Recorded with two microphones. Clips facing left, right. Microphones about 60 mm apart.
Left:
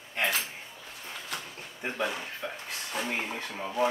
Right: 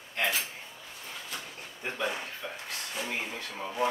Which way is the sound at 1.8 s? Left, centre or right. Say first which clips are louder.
Left 3 dB; left.